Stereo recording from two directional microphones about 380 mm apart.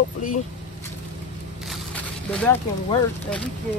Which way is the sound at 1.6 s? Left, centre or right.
Centre.